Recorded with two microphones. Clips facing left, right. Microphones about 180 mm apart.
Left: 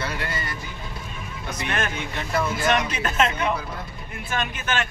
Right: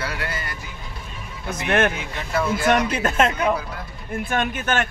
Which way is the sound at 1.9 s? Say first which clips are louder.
Right 1 dB; centre (ahead or behind).